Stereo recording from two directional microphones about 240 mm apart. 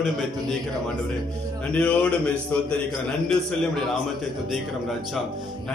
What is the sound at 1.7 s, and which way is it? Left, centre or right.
A man's voice, centre.